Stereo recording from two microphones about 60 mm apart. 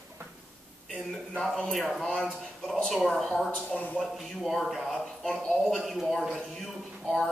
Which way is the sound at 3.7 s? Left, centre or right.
Left.